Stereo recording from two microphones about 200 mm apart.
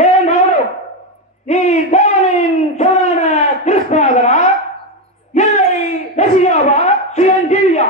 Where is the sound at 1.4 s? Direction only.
35° left (ahead or behind).